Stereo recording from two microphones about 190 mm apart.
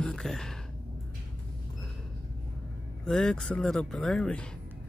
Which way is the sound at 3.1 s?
5° left (ahead or behind).